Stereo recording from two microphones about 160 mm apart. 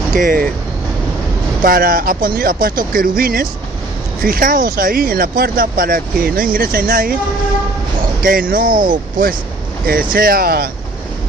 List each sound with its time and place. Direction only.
0.1 s speech: 60° right (ahead or behind)
1.6 s speech: 60° right (ahead or behind)
8.2 s speech: 60° right (ahead or behind)
10.1 s speech: 65° right (ahead or behind)